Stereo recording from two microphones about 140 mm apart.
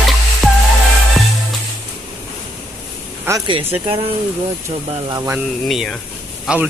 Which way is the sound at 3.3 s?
20° right (ahead or behind).